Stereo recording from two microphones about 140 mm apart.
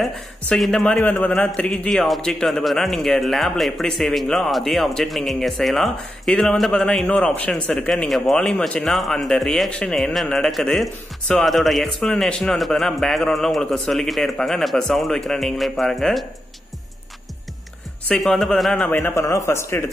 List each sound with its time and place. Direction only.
0.5 s speech: 5° left (ahead or behind)
18.0 s a man's voice: 5° left (ahead or behind)